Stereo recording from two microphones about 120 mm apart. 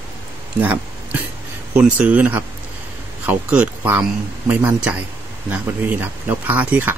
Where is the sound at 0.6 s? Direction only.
15° right (ahead or behind).